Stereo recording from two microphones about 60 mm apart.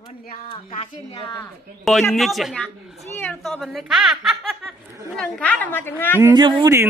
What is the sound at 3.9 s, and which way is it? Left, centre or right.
Speech, centre.